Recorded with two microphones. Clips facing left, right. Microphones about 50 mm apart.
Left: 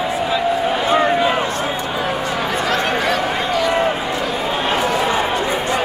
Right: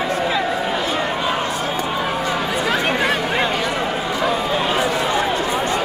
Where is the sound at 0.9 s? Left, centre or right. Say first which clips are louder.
Left 6 dB; left.